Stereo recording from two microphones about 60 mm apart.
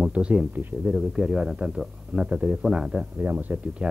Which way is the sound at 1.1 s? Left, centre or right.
Centre.